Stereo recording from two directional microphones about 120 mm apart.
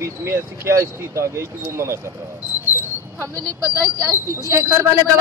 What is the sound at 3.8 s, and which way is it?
Speech, 25° right (ahead or behind).